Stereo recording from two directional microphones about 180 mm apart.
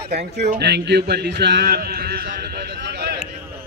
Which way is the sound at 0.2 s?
40° right (ahead or behind).